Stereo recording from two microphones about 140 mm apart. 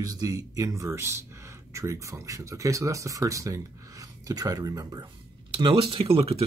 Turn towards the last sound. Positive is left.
turn(degrees=-45)  # may be behind; listen again after turning